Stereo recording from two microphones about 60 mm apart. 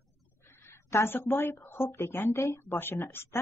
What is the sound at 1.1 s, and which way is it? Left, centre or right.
Speech, left.